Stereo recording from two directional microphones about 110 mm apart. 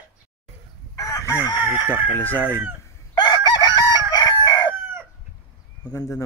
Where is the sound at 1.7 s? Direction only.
15° right (ahead or behind).